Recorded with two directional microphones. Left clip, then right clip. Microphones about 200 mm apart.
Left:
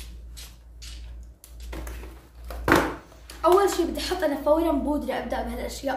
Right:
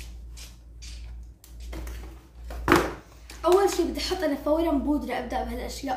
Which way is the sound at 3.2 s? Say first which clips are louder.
Left 2 dB; 10° left (ahead or behind).